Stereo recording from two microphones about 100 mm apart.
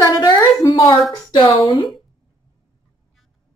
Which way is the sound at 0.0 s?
35° left (ahead or behind).